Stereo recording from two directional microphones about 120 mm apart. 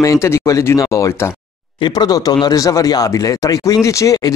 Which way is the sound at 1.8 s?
35° left (ahead or behind).